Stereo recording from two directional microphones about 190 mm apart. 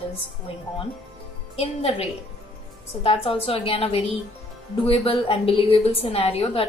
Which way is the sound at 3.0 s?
30° left (ahead or behind).